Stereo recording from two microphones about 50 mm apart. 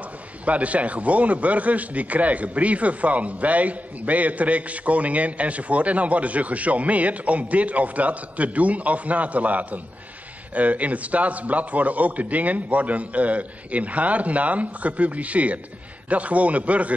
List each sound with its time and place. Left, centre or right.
0.0 s a man's voice: right